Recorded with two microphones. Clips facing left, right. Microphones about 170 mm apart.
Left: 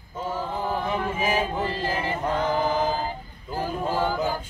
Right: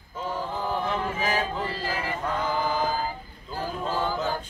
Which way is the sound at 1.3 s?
20° left (ahead or behind).